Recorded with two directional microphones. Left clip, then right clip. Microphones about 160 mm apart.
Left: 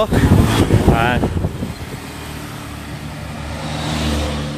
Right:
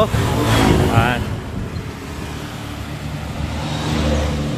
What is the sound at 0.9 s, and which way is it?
Vehicle, 70° left (ahead or behind).